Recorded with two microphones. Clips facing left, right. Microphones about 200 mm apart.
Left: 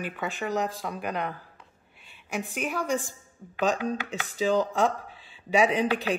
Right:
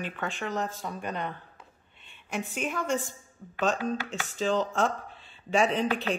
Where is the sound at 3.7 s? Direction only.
15° left (ahead or behind).